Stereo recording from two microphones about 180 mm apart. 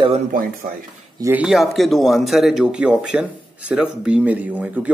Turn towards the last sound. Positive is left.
turn(degrees=-10)  # may be behind; listen again after turning